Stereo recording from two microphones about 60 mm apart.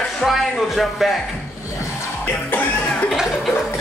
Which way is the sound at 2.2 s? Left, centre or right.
Left.